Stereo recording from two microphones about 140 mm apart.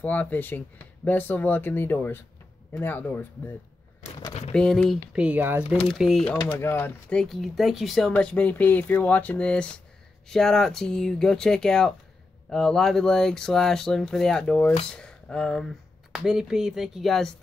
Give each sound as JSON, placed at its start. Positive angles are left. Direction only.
{"t": 0.0, "sound": "speech", "side_deg": 10}
{"t": 4.3, "sound": "a sound", "side_deg": 50}
{"t": 4.6, "sound": "speech", "side_deg": 5}
{"t": 5.1, "sound": "speech", "side_deg": -10}
{"t": 6.6, "sound": "speech", "side_deg": 15}